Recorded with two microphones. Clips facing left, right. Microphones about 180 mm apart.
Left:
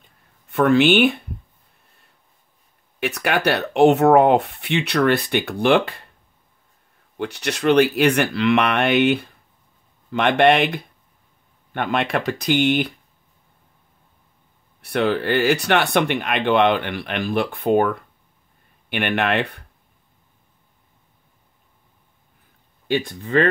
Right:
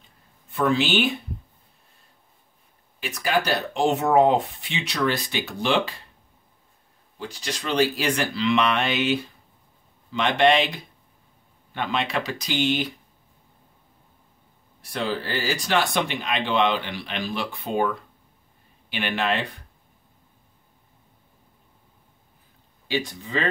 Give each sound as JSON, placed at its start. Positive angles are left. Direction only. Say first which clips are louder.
{"t": 0.5, "sound": "speech", "louder": "left 7 dB", "side_deg": 65}
{"t": 3.0, "sound": "speech", "louder": "left 3 dB", "side_deg": 70}
{"t": 7.2, "sound": "speech", "louder": "left 7 dB", "side_deg": 70}
{"t": 14.8, "sound": "speech", "louder": "left 7 dB", "side_deg": 65}
{"t": 22.8, "sound": "speech", "louder": "left 5 dB", "side_deg": 55}